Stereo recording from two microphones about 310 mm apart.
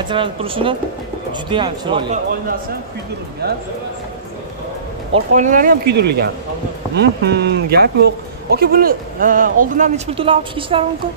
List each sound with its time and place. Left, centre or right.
0.1 s speech: centre
3.4 s speech: right
5.1 s speech: right